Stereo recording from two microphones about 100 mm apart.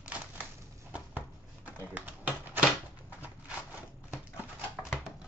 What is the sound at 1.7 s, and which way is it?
Typing, 20° right (ahead or behind).